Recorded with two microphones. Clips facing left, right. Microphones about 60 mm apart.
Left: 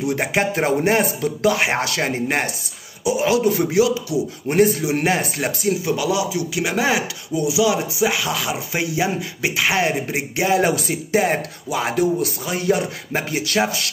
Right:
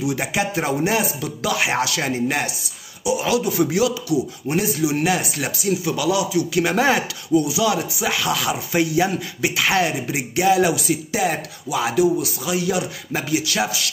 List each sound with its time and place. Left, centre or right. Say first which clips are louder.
0.0 s a man's voice: left 2 dB; left
4.5 s speech: left 5 dB; left
6.5 s speech: right 2 dB; centre
7.3 s speech: even; centre; by 13.8 s left